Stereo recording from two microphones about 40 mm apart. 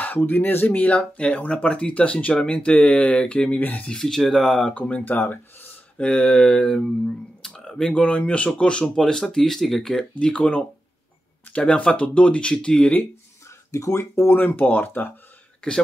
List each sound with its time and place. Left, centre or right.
0.0 s speech: left
0.7 s speech: left
3.5 s speech: left
4.0 s speech: centre
4.7 s speech: left
5.0 s speech: left
5.9 s speech: left
8.0 s speech: left
8.8 s speech: centre
10.4 s speech: left
14.1 s speech: left